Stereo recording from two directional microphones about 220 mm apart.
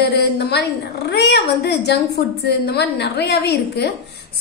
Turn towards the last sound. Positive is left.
turn(degrees=50)  # may be behind; listen again after turning